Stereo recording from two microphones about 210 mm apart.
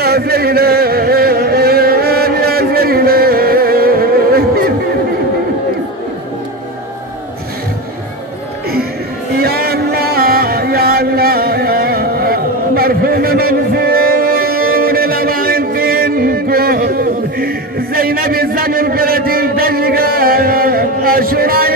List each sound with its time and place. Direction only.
0.0 s music: 50° right (ahead or behind)
9.3 s music: 45° right (ahead or behind)